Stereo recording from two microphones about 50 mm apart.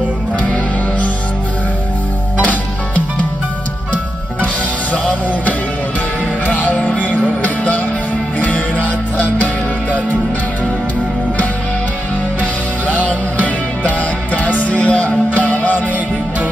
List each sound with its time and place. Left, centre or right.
2.4 s music: left
4.9 s music: left
12.8 s music: left